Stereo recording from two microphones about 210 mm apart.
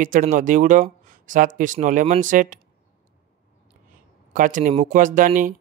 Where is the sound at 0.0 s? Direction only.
40° right (ahead or behind).